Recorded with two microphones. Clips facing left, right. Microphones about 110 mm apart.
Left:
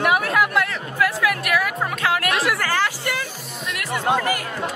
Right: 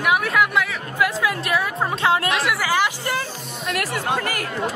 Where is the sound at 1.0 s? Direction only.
25° right (ahead or behind).